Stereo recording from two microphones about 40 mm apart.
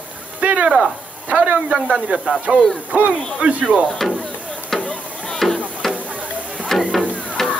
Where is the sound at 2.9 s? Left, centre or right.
Right.